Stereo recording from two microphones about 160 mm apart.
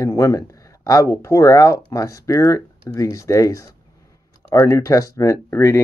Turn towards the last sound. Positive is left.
turn(degrees=15)  # may be behind; listen again after turning